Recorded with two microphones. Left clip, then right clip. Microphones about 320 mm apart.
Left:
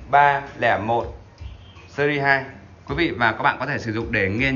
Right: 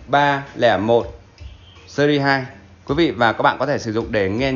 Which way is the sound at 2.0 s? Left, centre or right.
Centre.